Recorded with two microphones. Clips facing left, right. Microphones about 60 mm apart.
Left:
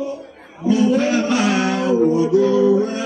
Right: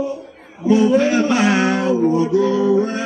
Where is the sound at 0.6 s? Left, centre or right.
Right.